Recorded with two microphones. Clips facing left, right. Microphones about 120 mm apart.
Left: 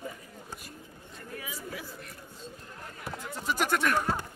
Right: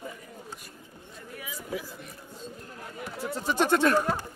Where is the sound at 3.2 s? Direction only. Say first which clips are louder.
Right 5 dB; 30° right (ahead or behind).